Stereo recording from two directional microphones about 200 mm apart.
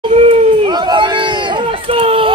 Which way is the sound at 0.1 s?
30° right (ahead or behind).